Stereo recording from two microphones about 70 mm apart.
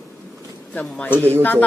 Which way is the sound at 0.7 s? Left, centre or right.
Centre.